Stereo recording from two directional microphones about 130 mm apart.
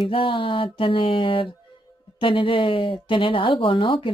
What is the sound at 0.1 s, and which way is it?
Speech, 40° left (ahead or behind).